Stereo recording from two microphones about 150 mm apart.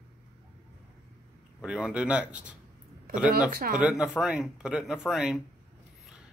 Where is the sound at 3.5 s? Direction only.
75° right (ahead or behind).